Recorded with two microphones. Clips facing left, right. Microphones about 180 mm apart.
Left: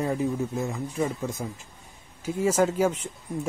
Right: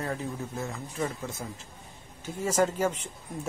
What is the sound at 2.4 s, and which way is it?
Speech, 10° left (ahead or behind).